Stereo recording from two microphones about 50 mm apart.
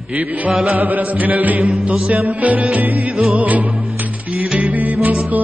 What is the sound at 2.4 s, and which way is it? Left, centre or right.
Music, right.